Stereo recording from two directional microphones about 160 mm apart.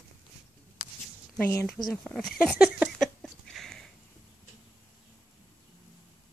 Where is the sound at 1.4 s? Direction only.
15° left (ahead or behind).